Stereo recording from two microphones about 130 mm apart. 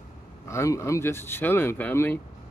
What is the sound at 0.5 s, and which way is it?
Speech, 20° left (ahead or behind).